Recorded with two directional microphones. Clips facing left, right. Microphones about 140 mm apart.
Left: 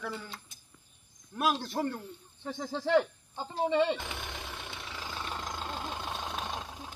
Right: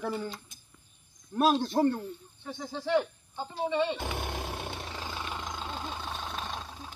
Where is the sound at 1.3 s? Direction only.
30° right (ahead or behind).